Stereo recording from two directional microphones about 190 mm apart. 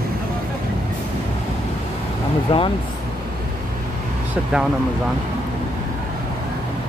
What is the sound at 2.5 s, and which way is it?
Speech, 30° left (ahead or behind).